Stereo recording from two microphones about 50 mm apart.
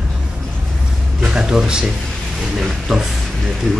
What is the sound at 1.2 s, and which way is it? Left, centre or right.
Speech, centre.